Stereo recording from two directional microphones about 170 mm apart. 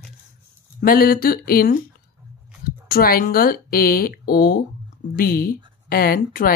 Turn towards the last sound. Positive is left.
turn(degrees=60)  # may be behind; listen again after turning